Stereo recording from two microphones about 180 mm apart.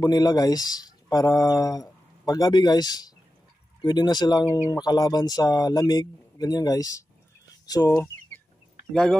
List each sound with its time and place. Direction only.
0.0 s speech: 20° left (ahead or behind)
8.9 s speech: 5° left (ahead or behind)